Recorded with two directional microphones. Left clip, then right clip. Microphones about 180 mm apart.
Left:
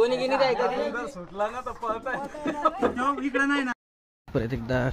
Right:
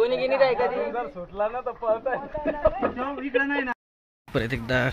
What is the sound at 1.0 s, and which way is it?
Speech, 35° right (ahead or behind).